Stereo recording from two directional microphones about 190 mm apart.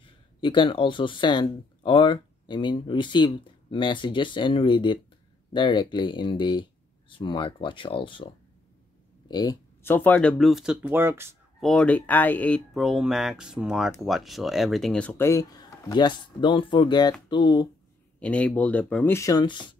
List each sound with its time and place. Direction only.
0.0 s speech: 25° left (ahead or behind)
9.3 s speech: 20° left (ahead or behind); by 11.3 s 10° right (ahead or behind)
11.6 s speech: 5° left (ahead or behind); by 17.6 s 25° left (ahead or behind)
18.2 s speech: 5° left (ahead or behind); by 19.7 s 25° left (ahead or behind)